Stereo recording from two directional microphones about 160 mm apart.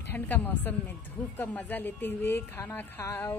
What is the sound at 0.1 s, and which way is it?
A woman's voice, 10° left (ahead or behind).